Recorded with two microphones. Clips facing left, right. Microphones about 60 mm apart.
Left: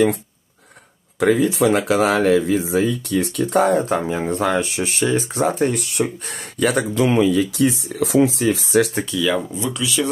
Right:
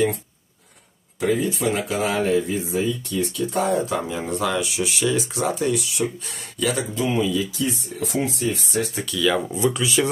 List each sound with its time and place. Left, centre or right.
1.2 s speech: left
9.1 s speech: centre
9.6 s speech: right